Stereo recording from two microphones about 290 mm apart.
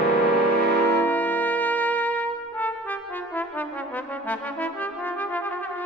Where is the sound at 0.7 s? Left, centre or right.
Right.